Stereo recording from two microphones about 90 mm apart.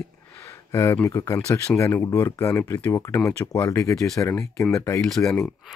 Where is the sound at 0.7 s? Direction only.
30° left (ahead or behind).